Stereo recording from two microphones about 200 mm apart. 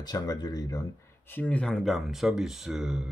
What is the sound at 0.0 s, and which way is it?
Speech, 20° left (ahead or behind).